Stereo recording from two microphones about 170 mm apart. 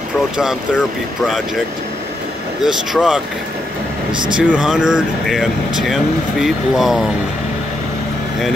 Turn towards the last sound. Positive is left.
turn(degrees=0)  # may be behind; listen again after turning